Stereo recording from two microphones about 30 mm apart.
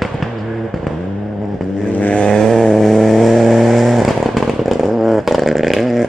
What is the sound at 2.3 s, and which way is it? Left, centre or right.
Vehicle, centre.